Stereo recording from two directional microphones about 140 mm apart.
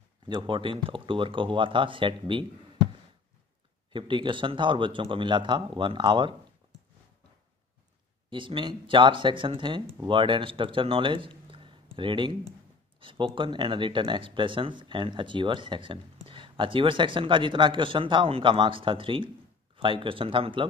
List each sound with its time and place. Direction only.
0.3 s speech: 35° right (ahead or behind)
3.9 s speech: 35° right (ahead or behind)
8.3 s speech: 35° right (ahead or behind)